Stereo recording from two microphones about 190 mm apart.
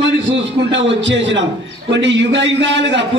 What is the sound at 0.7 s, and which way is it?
A man's voice, 70° right (ahead or behind).